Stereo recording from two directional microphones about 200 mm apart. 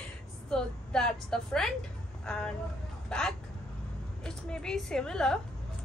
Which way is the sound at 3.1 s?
5° left (ahead or behind).